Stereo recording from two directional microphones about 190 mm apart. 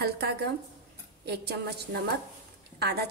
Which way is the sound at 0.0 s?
60° right (ahead or behind).